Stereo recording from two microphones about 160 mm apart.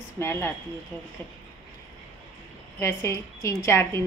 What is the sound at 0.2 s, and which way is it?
Speech, 15° left (ahead or behind).